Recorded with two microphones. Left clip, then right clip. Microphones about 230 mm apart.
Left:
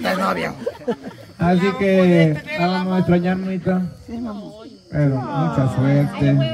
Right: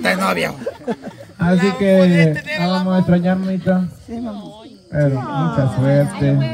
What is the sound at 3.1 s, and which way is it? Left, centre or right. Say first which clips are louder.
Speech: right 1 dB; centre.